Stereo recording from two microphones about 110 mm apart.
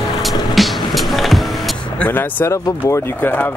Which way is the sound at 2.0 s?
20° left (ahead or behind).